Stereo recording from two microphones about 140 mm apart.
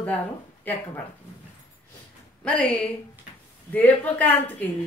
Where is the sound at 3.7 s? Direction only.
10° left (ahead or behind).